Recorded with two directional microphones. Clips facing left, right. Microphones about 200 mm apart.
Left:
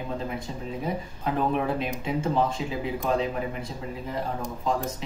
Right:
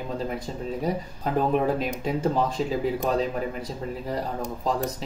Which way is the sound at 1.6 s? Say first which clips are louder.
Right 3 dB; 40° right (ahead or behind).